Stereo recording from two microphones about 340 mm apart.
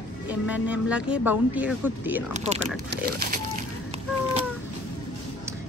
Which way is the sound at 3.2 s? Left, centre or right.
Right.